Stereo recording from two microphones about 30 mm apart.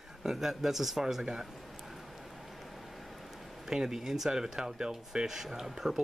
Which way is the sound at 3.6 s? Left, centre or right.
Centre.